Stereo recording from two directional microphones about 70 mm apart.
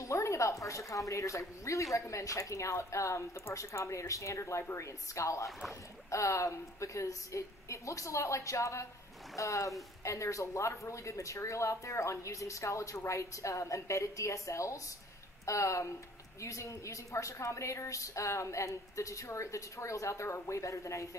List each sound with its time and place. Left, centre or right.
0.0 s a woman's voice: left